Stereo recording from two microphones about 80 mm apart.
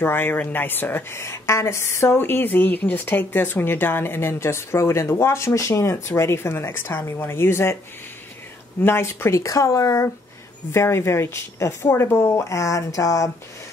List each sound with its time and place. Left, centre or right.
0.0 s a woman's voice: left
8.8 s a woman's voice: left